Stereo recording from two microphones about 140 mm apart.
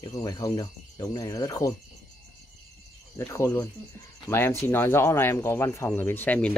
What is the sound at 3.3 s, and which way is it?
Speech, 20° left (ahead or behind).